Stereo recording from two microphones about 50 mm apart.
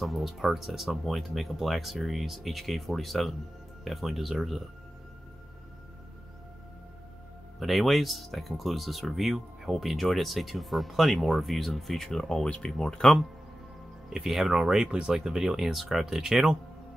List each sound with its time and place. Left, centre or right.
0.0 s speech: centre
7.5 s speech: centre
12.4 s speech: centre
14.0 s speech: centre